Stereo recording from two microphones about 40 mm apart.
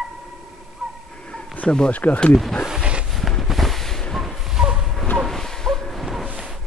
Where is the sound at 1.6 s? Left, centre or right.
Left.